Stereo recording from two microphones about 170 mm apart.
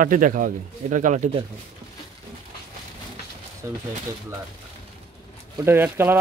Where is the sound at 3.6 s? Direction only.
20° right (ahead or behind).